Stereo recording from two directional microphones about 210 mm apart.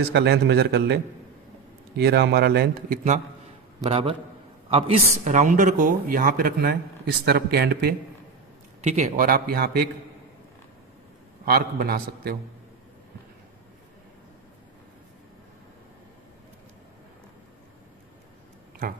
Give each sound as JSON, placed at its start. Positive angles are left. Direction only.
{"t": 0.1, "sound": "speech", "side_deg": -55}
{"t": 2.0, "sound": "speech", "side_deg": -50}
{"t": 3.8, "sound": "a man's voice", "side_deg": -25}
{"t": 8.8, "sound": "speech", "side_deg": -30}
{"t": 9.1, "sound": "speech", "side_deg": -45}
{"t": 11.4, "sound": "speech", "side_deg": -45}